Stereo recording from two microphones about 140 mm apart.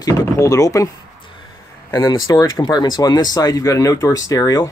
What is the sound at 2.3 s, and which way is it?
Speech, 30° left (ahead or behind).